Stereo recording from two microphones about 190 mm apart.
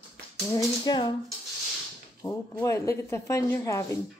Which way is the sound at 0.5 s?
20° left (ahead or behind).